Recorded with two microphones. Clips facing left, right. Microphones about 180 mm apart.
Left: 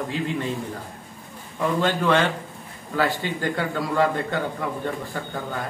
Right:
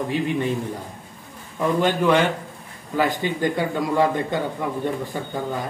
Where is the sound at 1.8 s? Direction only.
15° right (ahead or behind).